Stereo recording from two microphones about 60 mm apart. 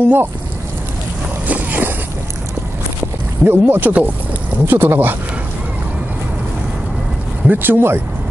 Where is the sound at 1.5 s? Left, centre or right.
Right.